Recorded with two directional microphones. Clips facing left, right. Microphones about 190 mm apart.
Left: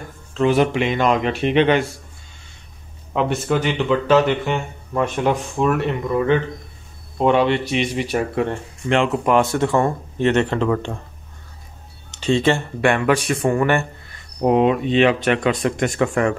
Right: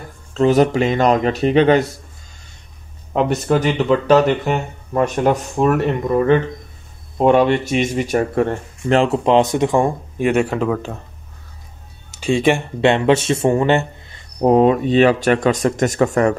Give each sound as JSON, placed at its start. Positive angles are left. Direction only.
{"t": 0.3, "sound": "speech", "side_deg": -40}
{"t": 3.1, "sound": "speech", "side_deg": -40}
{"t": 12.2, "sound": "speech", "side_deg": -10}
{"t": 14.4, "sound": "speech", "side_deg": -40}